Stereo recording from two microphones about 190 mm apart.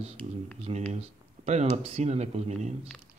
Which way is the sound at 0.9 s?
35° right (ahead or behind).